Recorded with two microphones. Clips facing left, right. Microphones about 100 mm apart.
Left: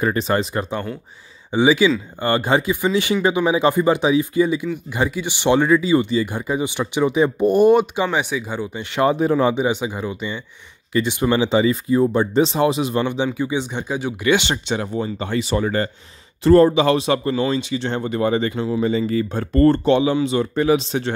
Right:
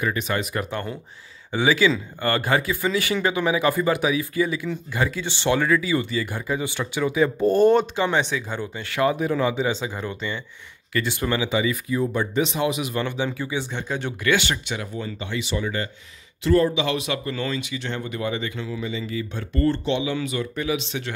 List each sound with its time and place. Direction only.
0.0 s speech: 35° left (ahead or behind)
1.5 s speech: 20° left (ahead or behind)
9.0 s speech: 30° left (ahead or behind)
9.6 s speech: 15° left (ahead or behind)
14.2 s speech: 20° left (ahead or behind)
15.1 s speech: 40° left (ahead or behind)
20.2 s speech: 30° left (ahead or behind)